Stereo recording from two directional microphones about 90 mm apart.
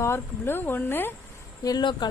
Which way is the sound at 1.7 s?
50° left (ahead or behind).